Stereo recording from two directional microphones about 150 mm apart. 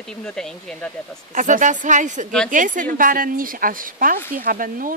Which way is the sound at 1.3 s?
60° right (ahead or behind).